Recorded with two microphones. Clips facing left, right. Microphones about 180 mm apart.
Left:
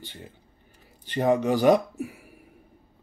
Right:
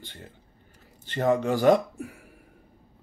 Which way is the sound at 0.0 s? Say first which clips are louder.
Left 2 dB; 15° left (ahead or behind).